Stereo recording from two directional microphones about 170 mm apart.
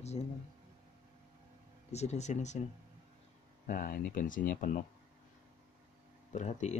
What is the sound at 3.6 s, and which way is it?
Speech, 55° left (ahead or behind).